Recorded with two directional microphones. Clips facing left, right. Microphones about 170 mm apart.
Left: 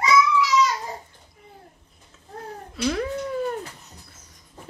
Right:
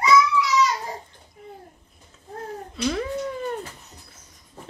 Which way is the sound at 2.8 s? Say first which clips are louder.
Left 1 dB; centre (ahead or behind).